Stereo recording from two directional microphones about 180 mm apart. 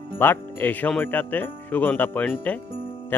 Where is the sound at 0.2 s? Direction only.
10° left (ahead or behind).